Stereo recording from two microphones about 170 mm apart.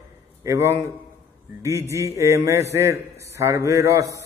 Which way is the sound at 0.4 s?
15° right (ahead or behind).